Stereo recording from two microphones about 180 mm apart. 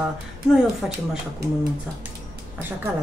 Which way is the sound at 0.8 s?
Centre (ahead or behind).